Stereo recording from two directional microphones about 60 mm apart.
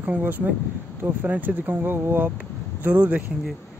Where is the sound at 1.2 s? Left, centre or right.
Right.